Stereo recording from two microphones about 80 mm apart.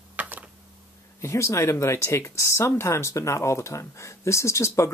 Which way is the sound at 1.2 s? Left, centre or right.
Left.